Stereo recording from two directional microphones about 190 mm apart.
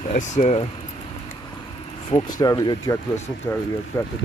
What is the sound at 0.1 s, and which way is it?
Speech, 40° left (ahead or behind).